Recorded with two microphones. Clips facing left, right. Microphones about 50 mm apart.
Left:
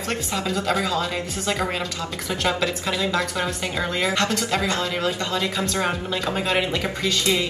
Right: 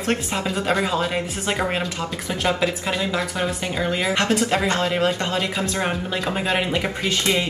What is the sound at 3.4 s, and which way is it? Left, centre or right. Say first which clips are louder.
Speech: right 2 dB; centre.